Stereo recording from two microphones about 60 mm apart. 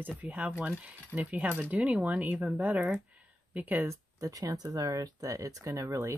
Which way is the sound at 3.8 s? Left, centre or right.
Right.